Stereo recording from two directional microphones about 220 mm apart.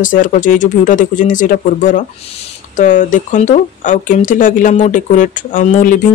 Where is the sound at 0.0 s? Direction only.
35° left (ahead or behind).